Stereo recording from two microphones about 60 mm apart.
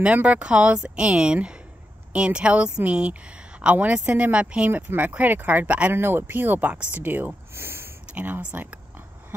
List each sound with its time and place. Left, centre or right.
0.0 s a woman's voice: right
4.6 s speech: right
5.9 s speech: right
7.5 s a sound: right
8.1 s a woman's voice: right